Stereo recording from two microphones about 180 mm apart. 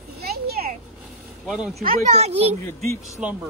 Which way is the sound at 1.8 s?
40° right (ahead or behind).